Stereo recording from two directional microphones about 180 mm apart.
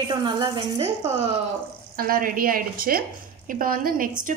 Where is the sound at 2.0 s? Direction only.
50° right (ahead or behind).